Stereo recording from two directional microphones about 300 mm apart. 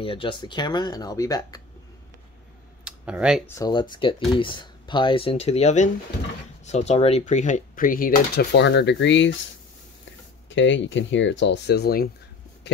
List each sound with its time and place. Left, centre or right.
0.0 s speech: centre
2.8 s speech: centre
3.5 s speech: centre; by 12.1 s left